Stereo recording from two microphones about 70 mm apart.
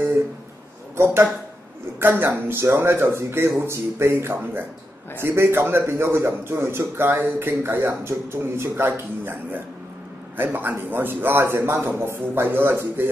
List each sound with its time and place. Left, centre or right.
0.9 s a man's voice: right